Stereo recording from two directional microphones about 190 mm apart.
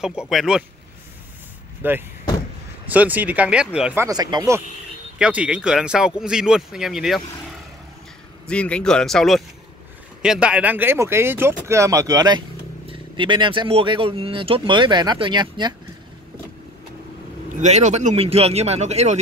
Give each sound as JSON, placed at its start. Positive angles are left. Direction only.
{"t": 0.0, "sound": "speech", "side_deg": -5}
{"t": 1.8, "sound": "speech", "side_deg": -10}
{"t": 5.2, "sound": "speech", "side_deg": -5}
{"t": 8.5, "sound": "speech", "side_deg": 5}
{"t": 17.6, "sound": "speech", "side_deg": -40}